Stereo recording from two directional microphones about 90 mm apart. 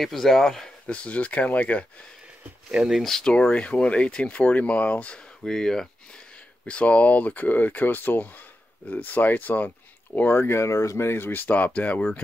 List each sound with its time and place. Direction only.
0.0 s speech: 5° left (ahead or behind)
2.7 s speech: 5° right (ahead or behind); by 5.2 s 15° left (ahead or behind)
5.4 s speech: 5° left (ahead or behind)